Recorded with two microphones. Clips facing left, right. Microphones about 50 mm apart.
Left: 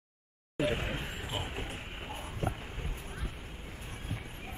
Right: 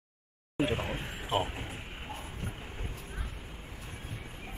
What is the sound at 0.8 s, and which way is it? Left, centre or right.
Speech, centre.